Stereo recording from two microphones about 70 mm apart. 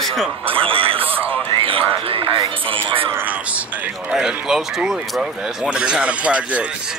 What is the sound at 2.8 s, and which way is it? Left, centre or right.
Speech, right.